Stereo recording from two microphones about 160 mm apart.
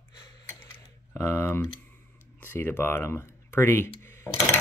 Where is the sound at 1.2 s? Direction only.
15° left (ahead or behind).